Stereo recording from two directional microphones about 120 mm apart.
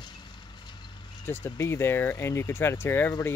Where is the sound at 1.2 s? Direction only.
20° left (ahead or behind).